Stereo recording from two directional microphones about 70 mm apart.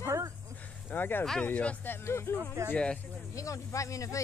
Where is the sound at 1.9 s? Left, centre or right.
Left.